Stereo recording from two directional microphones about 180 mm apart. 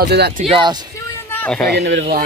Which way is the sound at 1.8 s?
70° right (ahead or behind).